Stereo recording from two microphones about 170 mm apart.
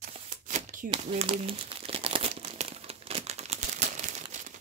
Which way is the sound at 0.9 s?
30° right (ahead or behind).